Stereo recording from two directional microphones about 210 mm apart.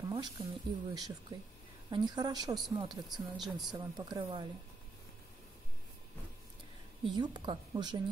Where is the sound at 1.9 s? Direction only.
20° right (ahead or behind).